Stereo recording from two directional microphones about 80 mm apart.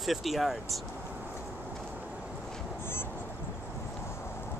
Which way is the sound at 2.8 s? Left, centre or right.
Left.